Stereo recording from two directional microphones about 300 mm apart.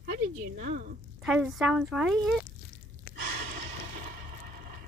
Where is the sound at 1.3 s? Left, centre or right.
Centre.